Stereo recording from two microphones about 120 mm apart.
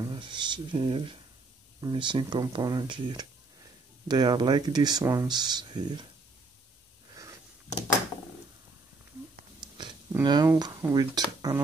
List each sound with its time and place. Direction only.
0.0 s speech: 40° right (ahead or behind)
9.6 s a sound: 40° right (ahead or behind)
10.2 s speech: 35° right (ahead or behind)